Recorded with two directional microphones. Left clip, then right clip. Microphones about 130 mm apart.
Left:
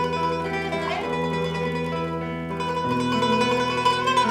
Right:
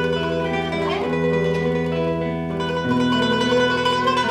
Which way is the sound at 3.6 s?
30° left (ahead or behind).